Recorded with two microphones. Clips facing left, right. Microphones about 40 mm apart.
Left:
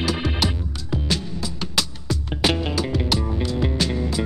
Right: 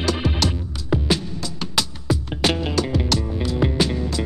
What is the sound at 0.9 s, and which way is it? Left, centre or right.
Music, centre.